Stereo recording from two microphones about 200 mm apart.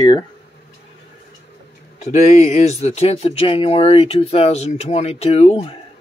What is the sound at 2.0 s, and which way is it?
Speech, 35° left (ahead or behind).